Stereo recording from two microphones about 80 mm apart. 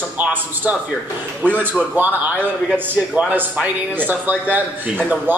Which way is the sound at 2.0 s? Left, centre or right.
Right.